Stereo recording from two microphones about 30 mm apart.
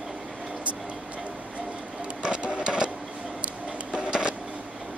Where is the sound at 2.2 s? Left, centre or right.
Right.